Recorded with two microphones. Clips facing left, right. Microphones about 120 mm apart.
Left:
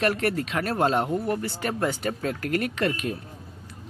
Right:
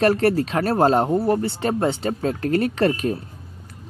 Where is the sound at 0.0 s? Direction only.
35° right (ahead or behind).